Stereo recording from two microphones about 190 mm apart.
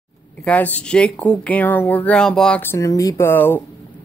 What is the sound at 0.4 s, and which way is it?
Speech, 10° left (ahead or behind).